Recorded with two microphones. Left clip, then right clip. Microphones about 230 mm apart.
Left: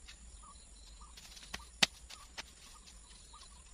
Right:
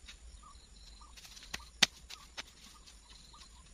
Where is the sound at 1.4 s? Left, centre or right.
Right.